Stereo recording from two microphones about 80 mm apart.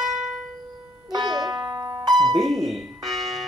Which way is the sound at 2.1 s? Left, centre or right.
Centre.